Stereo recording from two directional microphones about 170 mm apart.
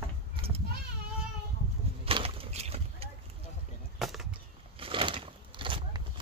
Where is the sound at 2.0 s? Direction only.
35° right (ahead or behind).